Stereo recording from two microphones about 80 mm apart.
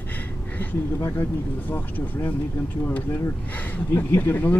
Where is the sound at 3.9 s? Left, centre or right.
Left.